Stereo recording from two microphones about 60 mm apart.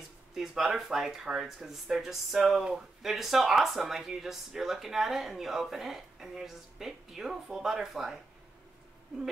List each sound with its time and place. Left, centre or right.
0.3 s speech: centre